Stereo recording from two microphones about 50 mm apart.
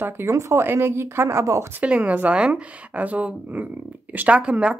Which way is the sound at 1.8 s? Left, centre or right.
Right.